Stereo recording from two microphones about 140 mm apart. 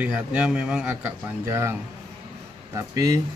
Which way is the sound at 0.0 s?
10° right (ahead or behind).